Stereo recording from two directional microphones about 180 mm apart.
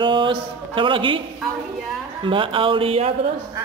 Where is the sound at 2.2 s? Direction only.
30° right (ahead or behind).